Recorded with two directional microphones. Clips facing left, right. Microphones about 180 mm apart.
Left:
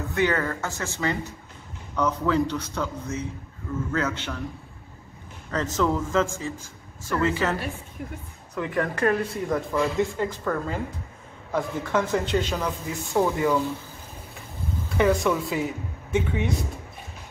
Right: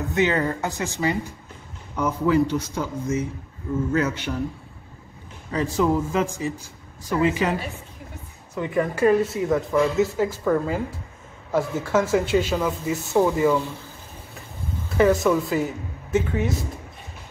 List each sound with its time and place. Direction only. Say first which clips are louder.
0.1 s speech: right 2 dB; 20° right (ahead or behind)
5.5 s speech: right 3 dB; 10° right (ahead or behind)
8.5 s a man's voice: right 3 dB; 5° right (ahead or behind)
15.0 s a man's voice: right 3 dB; centre (ahead or behind)